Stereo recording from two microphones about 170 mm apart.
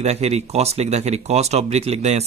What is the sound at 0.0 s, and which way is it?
Speech, 40° right (ahead or behind).